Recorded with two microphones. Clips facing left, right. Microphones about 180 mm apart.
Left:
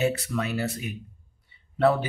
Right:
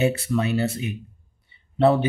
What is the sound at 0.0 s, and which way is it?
Speech, 25° right (ahead or behind).